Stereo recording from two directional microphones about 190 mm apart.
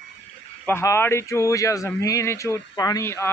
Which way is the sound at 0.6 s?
15° left (ahead or behind).